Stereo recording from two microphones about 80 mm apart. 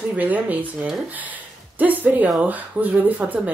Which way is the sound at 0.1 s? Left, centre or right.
Centre.